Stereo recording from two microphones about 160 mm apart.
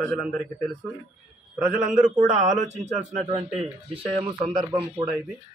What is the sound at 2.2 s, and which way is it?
Speech, 55° right (ahead or behind).